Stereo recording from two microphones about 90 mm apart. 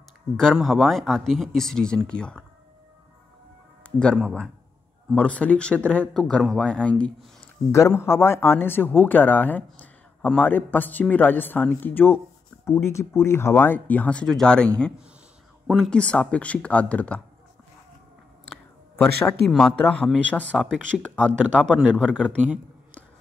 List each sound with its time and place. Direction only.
0.4 s speech: 5° left (ahead or behind)
3.8 s a sound: 15° left (ahead or behind)
5.1 s speech: 15° left (ahead or behind)
7.7 s speech: 30° left (ahead or behind)
12.6 s speech: 35° left (ahead or behind); by 14.7 s 10° left (ahead or behind)
15.7 s speech: 10° left (ahead or behind)
18.9 s speech: 5° left (ahead or behind)
22.0 s speech: 15° right (ahead or behind)